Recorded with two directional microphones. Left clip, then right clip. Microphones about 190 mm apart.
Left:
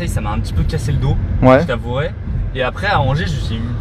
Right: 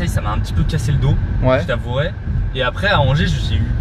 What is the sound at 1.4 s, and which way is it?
Speech, 30° left (ahead or behind).